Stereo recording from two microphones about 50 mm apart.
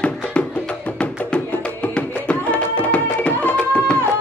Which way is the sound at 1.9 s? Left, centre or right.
Left.